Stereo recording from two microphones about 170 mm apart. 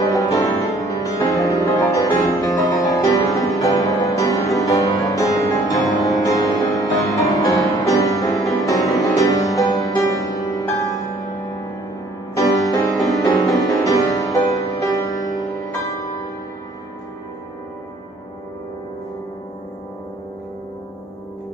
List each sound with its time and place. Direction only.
0.0 s music: 20° left (ahead or behind)
12.4 s music: 20° left (ahead or behind)